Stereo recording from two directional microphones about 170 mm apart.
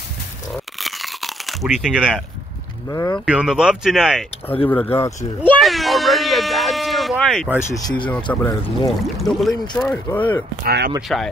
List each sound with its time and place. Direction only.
0.7 s crunch: centre (ahead or behind)
2.9 s speech: 20° left (ahead or behind)
3.3 s speech: 5° right (ahead or behind)
4.6 s speech: 10° left (ahead or behind)
5.6 s a sound: centre (ahead or behind)
8.3 s speech: 15° left (ahead or behind)
9.0 s speech: centre (ahead or behind)
10.6 s speech: 70° right (ahead or behind)
11.0 s speech: centre (ahead or behind)